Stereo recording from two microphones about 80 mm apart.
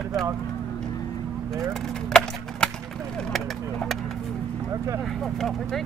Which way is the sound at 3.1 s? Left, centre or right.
Centre.